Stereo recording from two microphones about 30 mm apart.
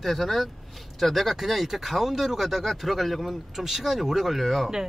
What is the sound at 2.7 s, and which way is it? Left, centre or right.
Speech, centre.